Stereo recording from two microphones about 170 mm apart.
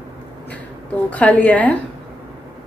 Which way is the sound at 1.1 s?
10° left (ahead or behind).